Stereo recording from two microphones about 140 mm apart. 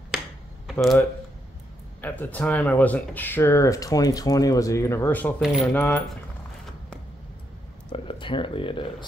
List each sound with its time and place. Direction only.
0.7 s a sound: centre (ahead or behind)
2.0 s speech: 10° left (ahead or behind)
5.4 s coin: 5° right (ahead or behind)
5.7 s coin: 10° left (ahead or behind)
7.9 s speech: 40° left (ahead or behind)